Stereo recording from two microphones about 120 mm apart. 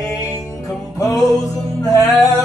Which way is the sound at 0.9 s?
30° left (ahead or behind).